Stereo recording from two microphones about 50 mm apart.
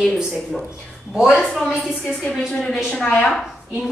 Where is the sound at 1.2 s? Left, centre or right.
Centre.